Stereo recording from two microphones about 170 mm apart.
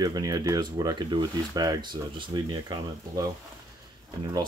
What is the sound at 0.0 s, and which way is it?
Speech, 20° right (ahead or behind).